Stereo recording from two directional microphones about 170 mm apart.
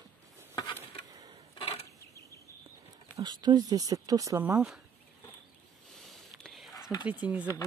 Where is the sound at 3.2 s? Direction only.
25° right (ahead or behind); by 4.8 s 5° right (ahead or behind).